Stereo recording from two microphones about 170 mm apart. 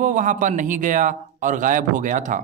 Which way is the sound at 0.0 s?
45° right (ahead or behind).